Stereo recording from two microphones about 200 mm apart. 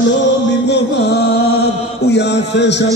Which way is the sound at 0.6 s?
55° left (ahead or behind).